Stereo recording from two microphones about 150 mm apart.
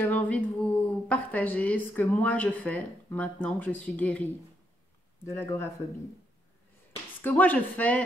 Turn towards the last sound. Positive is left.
turn(degrees=10)  # may be behind; listen again after turning